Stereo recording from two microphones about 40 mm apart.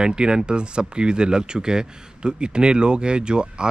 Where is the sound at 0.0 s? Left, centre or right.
Right.